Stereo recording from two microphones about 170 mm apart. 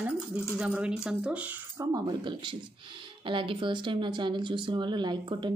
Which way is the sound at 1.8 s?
25° right (ahead or behind).